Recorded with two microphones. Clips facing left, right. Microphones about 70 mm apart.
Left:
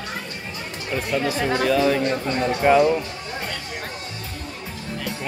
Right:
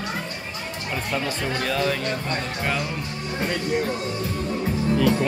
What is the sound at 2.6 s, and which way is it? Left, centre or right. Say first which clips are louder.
Speech: left 12 dB; centre.